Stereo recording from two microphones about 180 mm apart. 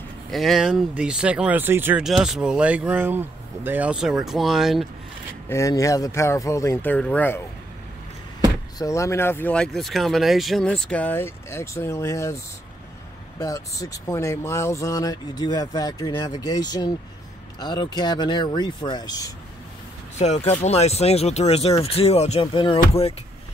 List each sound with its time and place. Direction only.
0.3 s speech: centre (ahead or behind)
5.5 s speech: 15° left (ahead or behind)
8.7 s speech: 15° left (ahead or behind)
13.4 s speech: 15° left (ahead or behind)
20.2 s speech: 40° left (ahead or behind)